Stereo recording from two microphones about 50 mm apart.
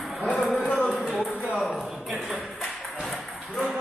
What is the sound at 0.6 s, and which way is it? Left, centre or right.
Music, left.